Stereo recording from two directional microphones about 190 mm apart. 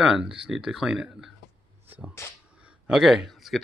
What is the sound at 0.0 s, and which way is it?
Speech, 5° right (ahead or behind).